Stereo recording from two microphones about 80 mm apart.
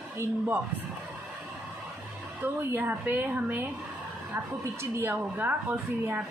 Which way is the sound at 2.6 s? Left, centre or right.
Right.